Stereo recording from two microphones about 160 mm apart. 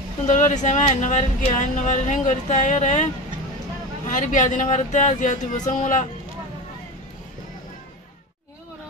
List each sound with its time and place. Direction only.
0.3 s speech: 50° left (ahead or behind)
4.1 s speech: 50° left (ahead or behind)